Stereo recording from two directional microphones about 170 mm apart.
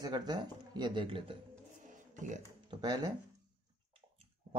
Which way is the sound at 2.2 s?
45° right (ahead or behind).